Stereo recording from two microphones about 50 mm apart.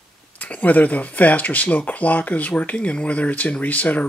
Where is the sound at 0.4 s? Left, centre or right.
Left.